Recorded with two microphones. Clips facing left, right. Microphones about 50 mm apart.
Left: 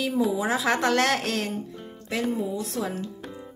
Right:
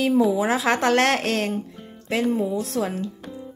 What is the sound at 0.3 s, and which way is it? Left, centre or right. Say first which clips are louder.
Speech: right 3 dB; right.